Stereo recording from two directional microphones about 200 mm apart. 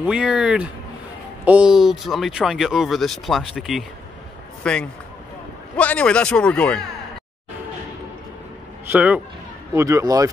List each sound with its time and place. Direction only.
0.0 s speech: 5° right (ahead or behind)
8.9 s speech: 5° right (ahead or behind)